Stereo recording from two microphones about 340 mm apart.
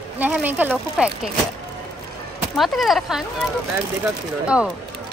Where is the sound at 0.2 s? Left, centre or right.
Centre.